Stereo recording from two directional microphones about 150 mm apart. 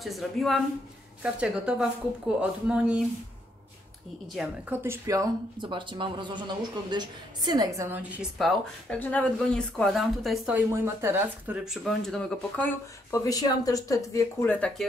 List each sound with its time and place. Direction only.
0.0 s speech: centre (ahead or behind)
4.4 s speech: 10° right (ahead or behind)
8.0 s speech: centre (ahead or behind)
10.5 s speech: 15° right (ahead or behind)
11.6 s speech: centre (ahead or behind)
13.2 s speech: 25° left (ahead or behind)
14.5 s speech: 5° left (ahead or behind)